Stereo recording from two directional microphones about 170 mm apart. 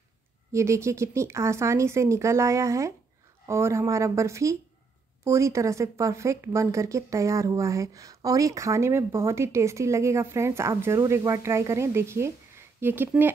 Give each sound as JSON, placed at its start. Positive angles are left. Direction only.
{"t": 0.5, "sound": "speech", "side_deg": -15}